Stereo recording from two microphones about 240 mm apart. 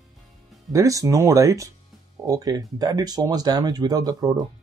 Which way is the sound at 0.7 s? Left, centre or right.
Centre.